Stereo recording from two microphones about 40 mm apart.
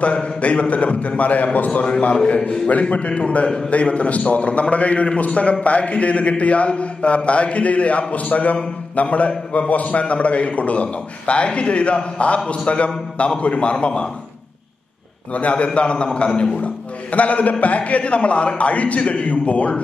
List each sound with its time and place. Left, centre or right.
0.0 s a man's voice: left
15.3 s a man's voice: left